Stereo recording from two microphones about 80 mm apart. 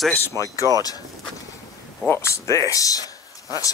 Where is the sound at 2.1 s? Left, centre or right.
Left.